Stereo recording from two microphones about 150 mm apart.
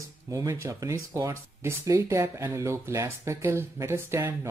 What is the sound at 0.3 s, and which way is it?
Speech, 20° right (ahead or behind).